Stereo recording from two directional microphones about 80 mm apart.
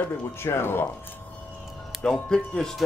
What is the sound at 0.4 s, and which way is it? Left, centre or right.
Speech, left.